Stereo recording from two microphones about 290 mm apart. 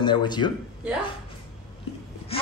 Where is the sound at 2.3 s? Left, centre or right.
Centre.